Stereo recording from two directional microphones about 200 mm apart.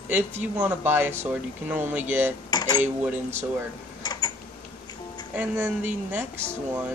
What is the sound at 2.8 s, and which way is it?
Speech, 10° right (ahead or behind).